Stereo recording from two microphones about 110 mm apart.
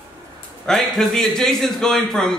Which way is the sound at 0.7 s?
5° left (ahead or behind).